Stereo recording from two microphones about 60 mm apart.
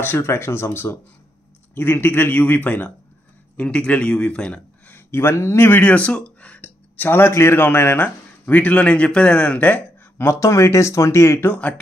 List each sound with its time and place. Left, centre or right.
0.2 s speech: left
2.3 s speech: left
4.8 s a man's voice: left
5.9 s speech: centre
10.2 s speech: left
11.4 s speech: left